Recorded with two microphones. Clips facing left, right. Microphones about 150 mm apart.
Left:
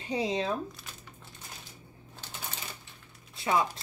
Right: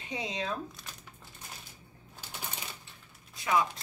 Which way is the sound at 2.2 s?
10° right (ahead or behind).